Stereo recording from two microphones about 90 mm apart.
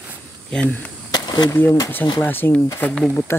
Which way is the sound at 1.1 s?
50° left (ahead or behind).